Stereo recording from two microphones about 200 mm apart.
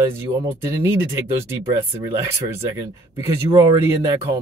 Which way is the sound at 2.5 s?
15° right (ahead or behind).